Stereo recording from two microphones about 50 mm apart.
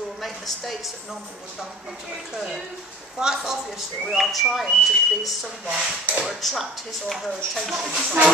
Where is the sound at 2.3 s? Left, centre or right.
Centre.